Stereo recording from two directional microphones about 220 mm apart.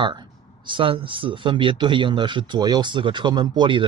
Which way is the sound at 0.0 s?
20° right (ahead or behind).